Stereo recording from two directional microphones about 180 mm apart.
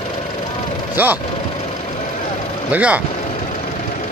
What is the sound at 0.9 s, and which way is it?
Speech, 10° right (ahead or behind).